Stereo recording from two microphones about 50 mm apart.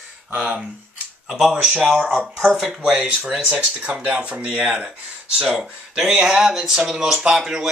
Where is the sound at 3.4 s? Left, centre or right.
Right.